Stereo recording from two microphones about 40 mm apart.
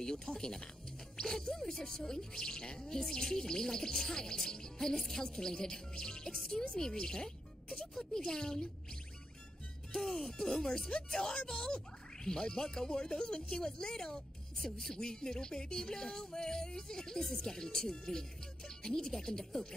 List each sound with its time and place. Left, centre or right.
0.0 s speech: centre
9.9 s speech: centre